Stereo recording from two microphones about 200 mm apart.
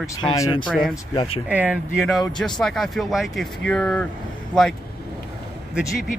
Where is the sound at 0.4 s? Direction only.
25° left (ahead or behind).